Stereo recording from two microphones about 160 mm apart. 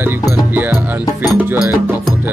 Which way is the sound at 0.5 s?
10° right (ahead or behind).